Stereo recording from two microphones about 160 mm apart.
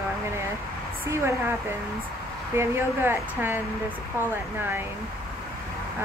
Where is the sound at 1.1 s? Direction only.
15° right (ahead or behind).